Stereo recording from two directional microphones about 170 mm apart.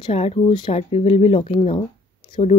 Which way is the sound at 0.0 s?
35° left (ahead or behind).